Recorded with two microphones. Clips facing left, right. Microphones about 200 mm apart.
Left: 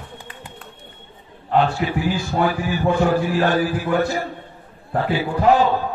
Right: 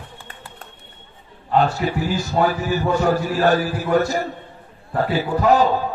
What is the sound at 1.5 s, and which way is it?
A man's voice, 40° right (ahead or behind).